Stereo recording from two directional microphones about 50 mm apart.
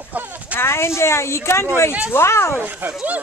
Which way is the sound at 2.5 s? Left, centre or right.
Right.